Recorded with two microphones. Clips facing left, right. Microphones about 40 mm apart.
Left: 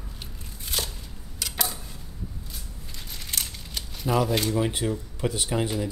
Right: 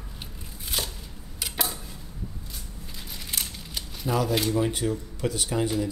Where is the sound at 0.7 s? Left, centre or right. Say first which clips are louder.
Even; centre.